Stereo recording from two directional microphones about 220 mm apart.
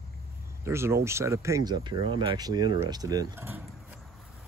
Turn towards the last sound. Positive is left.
turn(degrees=-10)  # may be behind; listen again after turning